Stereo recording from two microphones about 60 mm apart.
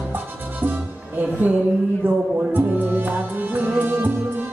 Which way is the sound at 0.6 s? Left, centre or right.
Right.